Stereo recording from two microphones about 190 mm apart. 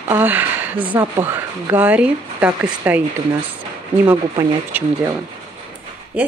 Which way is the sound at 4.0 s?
20° right (ahead or behind).